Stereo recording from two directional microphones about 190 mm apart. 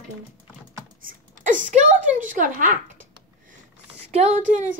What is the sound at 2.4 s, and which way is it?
Speech, 45° right (ahead or behind).